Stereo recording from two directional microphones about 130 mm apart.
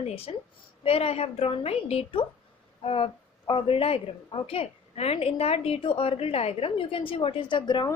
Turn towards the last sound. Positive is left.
turn(degrees=35)  # may be behind; listen again after turning